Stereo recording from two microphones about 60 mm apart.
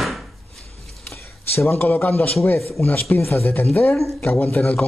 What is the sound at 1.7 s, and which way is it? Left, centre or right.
Speech, left.